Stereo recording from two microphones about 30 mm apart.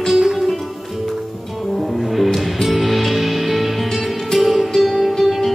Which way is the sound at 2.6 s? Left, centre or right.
Centre.